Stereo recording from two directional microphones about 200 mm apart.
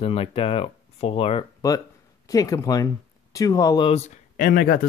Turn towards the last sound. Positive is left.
turn(degrees=50)  # may be behind; listen again after turning